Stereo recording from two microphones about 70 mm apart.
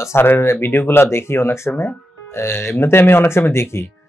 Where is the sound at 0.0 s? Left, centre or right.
Left.